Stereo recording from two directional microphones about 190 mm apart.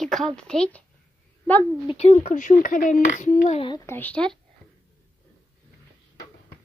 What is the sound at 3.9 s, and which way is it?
Speech, 10° left (ahead or behind).